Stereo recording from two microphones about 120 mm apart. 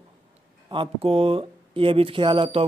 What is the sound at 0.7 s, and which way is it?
Speech, 45° right (ahead or behind).